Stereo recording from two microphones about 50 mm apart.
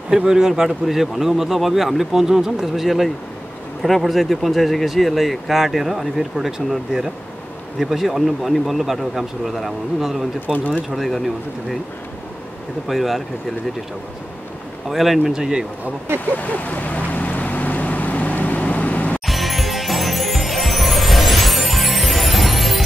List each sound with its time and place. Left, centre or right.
0.3 s speech: centre
7.8 s speech: centre
10.4 s speech: left
10.9 s speech: centre
12.8 s speech: centre
14.9 s speech: centre
16.3 s vehicle: left
19.2 s music: centre